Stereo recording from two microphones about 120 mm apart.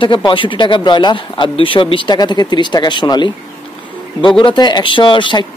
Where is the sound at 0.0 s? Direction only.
45° left (ahead or behind).